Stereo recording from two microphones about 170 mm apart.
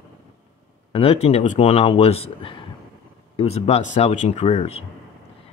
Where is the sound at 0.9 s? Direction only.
35° left (ahead or behind).